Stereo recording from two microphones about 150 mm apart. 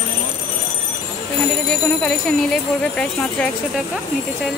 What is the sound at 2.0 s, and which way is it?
Speech, 5° left (ahead or behind).